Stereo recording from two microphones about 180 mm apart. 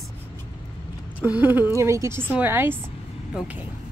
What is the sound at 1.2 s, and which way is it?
Speech, 10° right (ahead or behind).